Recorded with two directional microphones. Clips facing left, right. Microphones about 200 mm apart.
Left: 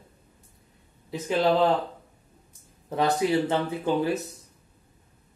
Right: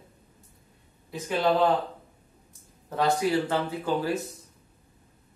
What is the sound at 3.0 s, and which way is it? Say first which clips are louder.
Speech: left 1 dB; 20° left (ahead or behind).